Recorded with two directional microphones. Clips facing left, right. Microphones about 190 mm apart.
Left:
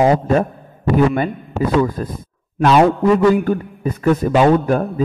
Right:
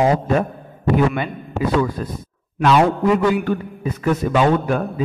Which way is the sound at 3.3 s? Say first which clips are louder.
Left 3 dB; 45° left (ahead or behind).